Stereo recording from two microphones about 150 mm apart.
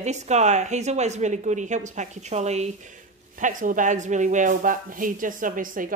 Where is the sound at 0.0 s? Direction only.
50° right (ahead or behind).